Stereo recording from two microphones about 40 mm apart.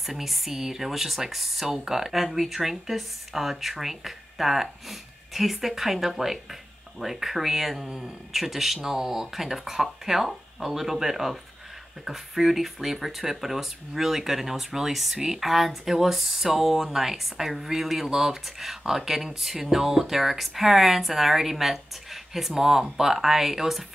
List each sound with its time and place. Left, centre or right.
0.0 s speech: centre
7.8 s speech: centre
8.3 s speech: centre